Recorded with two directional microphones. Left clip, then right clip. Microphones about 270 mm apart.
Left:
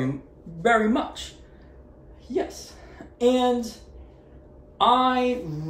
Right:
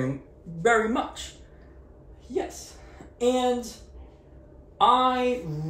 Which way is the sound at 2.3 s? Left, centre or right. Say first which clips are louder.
Left 3 dB; centre.